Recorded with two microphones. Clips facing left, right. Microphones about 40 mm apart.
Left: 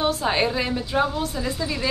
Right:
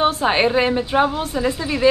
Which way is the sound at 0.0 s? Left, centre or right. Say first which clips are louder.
Right 5 dB; right.